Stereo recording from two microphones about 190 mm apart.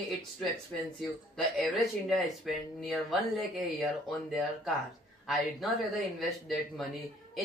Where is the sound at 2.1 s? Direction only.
Centre (ahead or behind).